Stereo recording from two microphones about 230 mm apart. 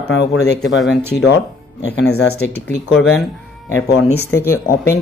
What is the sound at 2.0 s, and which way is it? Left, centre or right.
Speech, left.